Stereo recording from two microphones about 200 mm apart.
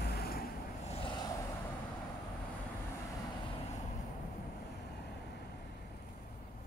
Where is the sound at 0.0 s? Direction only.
55° left (ahead or behind).